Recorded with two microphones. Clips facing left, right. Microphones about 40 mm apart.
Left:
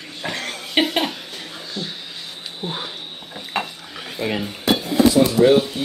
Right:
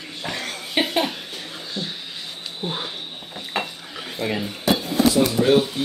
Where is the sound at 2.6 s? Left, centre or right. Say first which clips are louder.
Even; centre.